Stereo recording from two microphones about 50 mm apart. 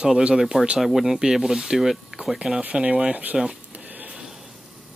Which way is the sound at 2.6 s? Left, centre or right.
Right.